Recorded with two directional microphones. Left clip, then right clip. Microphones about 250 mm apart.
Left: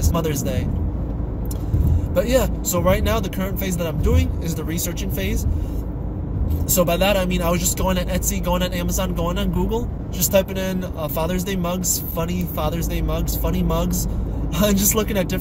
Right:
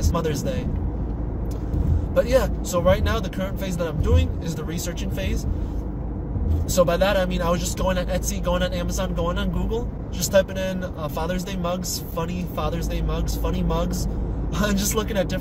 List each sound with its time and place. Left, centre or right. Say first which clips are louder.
2.1 s speech: left 1 dB; centre
6.8 s speech: left 1 dB; centre